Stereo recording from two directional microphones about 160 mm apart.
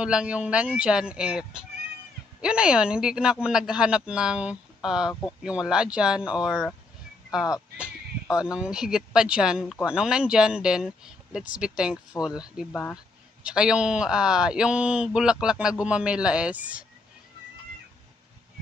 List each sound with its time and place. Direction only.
0.0 s speech: 5° right (ahead or behind)
8.4 s speech: 5° right (ahead or behind)